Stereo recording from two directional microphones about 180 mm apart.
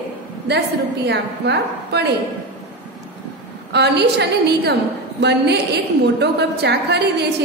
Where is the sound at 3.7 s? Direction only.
70° right (ahead or behind).